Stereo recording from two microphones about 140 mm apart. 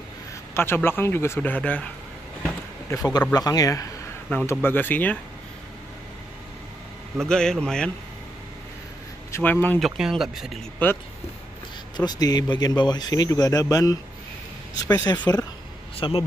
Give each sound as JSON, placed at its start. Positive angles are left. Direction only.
{"t": 0.6, "sound": "speech", "side_deg": 15}
{"t": 2.9, "sound": "a man's voice", "side_deg": 25}
{"t": 7.2, "sound": "speech", "side_deg": 5}
{"t": 9.3, "sound": "speech", "side_deg": 15}
{"t": 9.8, "sound": "speech", "side_deg": 0}
{"t": 10.8, "sound": "speech", "side_deg": 10}
{"t": 12.0, "sound": "a man's voice", "side_deg": 30}
{"t": 16.0, "sound": "speech", "side_deg": 40}